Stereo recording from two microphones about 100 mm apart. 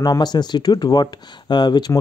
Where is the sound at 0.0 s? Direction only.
45° left (ahead or behind).